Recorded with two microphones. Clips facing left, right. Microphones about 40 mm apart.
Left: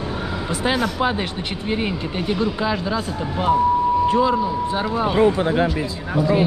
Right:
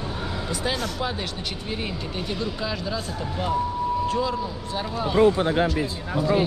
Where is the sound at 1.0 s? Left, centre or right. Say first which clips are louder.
Left 7 dB; left.